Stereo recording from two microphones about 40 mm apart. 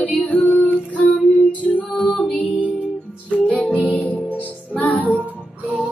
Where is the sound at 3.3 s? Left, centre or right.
Left.